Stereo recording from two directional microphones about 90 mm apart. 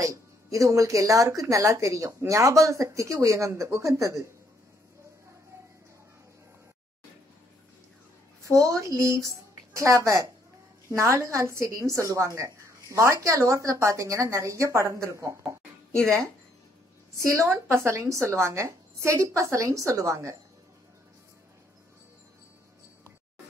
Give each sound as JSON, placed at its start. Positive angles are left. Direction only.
{"t": 0.0, "sound": "speech", "side_deg": -35}
{"t": 8.5, "sound": "speech", "side_deg": -40}
{"t": 17.3, "sound": "speech", "side_deg": -30}